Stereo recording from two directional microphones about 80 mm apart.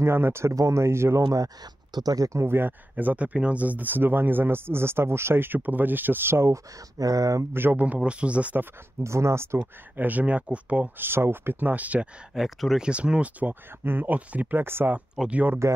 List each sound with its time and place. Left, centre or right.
0.0 s speech: right
1.3 s speech: right
7.5 s speech: right
9.0 s speech: right
9.9 s speech: right
11.1 s speech: right
12.4 s speech: centre
12.8 s speech: centre